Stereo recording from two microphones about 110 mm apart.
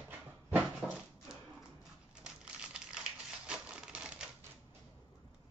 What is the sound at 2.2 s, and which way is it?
Crumpling, 10° right (ahead or behind).